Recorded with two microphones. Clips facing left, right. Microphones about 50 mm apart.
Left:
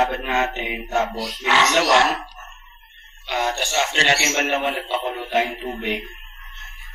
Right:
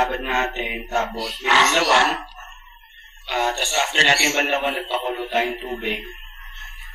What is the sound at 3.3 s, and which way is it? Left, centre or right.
Speech, right.